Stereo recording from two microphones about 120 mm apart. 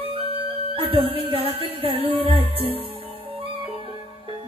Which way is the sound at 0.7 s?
50° right (ahead or behind).